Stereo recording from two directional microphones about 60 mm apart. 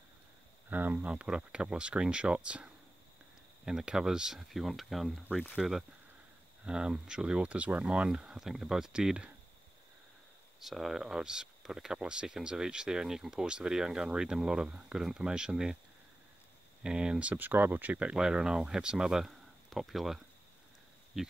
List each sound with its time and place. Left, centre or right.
0.7 s speech: right; by 9.3 s centre
10.6 s speech: centre
16.8 s speech: centre
18.1 s speech: centre